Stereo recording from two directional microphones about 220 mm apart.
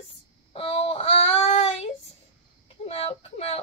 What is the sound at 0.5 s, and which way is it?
Child singing, 25° left (ahead or behind).